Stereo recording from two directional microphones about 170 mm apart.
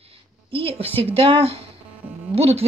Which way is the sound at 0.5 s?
35° right (ahead or behind).